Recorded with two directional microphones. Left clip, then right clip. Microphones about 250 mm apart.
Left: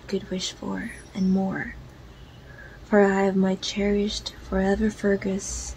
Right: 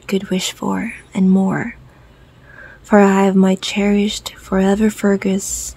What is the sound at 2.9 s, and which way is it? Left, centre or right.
Speech, right.